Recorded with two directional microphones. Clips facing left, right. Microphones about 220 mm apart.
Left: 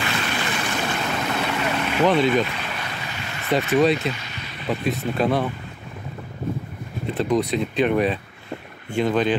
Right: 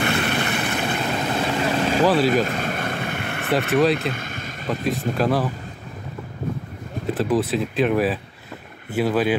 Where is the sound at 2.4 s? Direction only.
45° right (ahead or behind).